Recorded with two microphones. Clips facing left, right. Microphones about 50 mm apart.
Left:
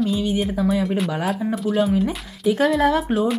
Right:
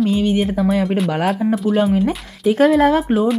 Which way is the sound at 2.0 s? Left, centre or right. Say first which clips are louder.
Right 4 dB; right.